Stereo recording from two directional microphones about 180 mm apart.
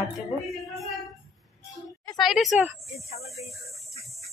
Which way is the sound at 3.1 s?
35° left (ahead or behind).